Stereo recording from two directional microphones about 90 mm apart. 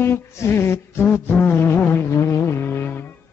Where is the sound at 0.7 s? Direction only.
25° left (ahead or behind).